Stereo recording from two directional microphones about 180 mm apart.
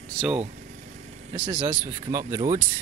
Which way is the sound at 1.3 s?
25° right (ahead or behind).